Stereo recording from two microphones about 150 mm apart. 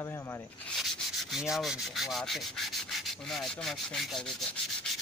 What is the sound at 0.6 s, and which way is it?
Rub, centre (ahead or behind).